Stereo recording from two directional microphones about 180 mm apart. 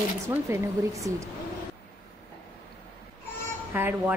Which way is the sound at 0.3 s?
15° right (ahead or behind).